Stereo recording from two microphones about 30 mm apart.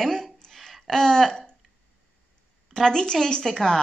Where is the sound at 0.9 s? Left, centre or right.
Centre.